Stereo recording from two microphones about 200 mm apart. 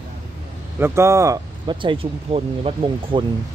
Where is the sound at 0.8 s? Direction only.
15° right (ahead or behind).